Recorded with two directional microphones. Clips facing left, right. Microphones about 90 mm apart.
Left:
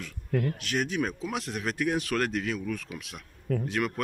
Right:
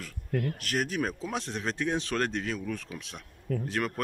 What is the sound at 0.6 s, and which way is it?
A man's voice, 45° right (ahead or behind).